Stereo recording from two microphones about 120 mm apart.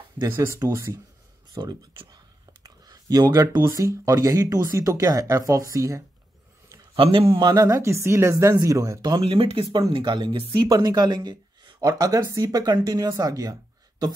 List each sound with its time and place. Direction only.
0.3 s speech: 25° right (ahead or behind)
1.6 s a sound: 40° right (ahead or behind)
3.6 s speech: 30° right (ahead or behind)
7.0 s speech: 50° right (ahead or behind)
7.5 s speech: 25° right (ahead or behind)
9.2 s speech: 50° right (ahead or behind)
9.7 s speech: 40° right (ahead or behind)